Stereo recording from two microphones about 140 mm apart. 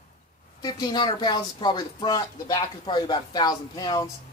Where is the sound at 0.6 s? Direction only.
30° left (ahead or behind).